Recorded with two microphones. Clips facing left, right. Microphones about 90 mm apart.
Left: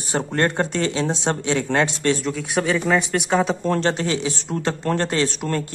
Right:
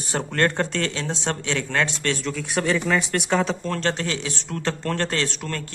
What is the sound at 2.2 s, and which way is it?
Speech, 5° left (ahead or behind).